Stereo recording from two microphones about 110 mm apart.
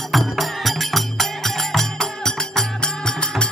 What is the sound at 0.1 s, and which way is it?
Music, centre (ahead or behind).